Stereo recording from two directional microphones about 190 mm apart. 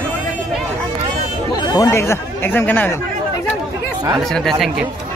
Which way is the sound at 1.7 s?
15° left (ahead or behind).